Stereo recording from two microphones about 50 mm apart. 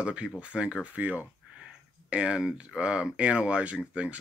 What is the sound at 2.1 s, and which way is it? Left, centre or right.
Speech, right.